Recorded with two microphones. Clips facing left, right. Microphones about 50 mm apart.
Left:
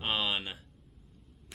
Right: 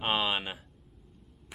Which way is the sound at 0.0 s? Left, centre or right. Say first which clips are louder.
Right 3 dB; centre.